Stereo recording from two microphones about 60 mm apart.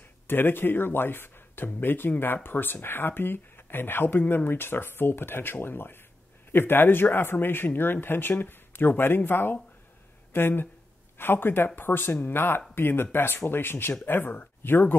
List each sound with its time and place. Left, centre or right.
0.3 s speech: left